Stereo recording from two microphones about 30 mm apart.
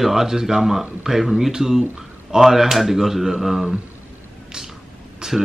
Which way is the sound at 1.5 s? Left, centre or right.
Centre.